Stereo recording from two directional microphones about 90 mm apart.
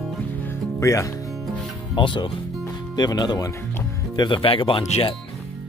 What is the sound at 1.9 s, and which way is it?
Speech, 60° left (ahead or behind).